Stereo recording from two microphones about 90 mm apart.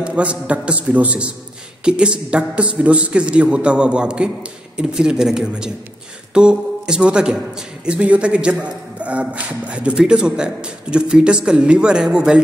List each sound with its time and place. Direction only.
0.0 s a man's voice: 15° right (ahead or behind)